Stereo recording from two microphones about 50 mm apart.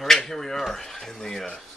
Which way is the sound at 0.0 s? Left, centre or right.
Centre.